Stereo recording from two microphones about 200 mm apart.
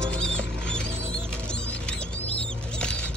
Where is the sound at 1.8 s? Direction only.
5° left (ahead or behind).